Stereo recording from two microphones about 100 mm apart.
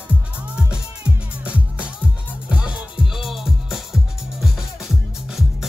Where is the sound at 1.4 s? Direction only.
10° right (ahead or behind).